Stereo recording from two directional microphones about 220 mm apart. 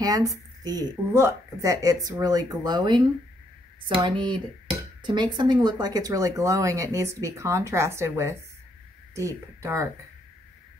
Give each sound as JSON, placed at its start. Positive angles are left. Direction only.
{"t": 0.0, "sound": "speech", "side_deg": -15}